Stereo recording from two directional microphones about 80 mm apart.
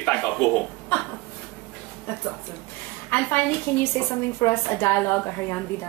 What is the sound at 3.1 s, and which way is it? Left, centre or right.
A woman's voice, left.